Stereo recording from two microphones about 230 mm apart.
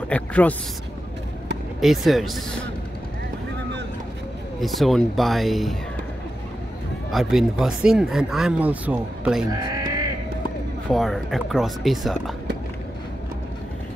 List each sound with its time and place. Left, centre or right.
0.1 s speech: centre
1.8 s speech: centre
4.6 s speech: centre
7.1 s speech: centre
9.5 s crow: centre
10.9 s speech: centre